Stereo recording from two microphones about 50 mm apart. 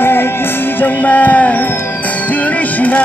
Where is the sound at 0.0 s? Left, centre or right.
Left.